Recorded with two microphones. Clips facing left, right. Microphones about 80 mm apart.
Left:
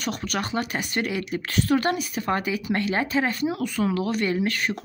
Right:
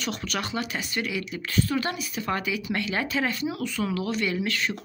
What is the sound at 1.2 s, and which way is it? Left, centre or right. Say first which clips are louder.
Speech: left 2 dB; left.